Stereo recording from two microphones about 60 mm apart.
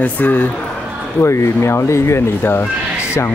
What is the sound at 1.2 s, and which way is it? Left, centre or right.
Speech, left.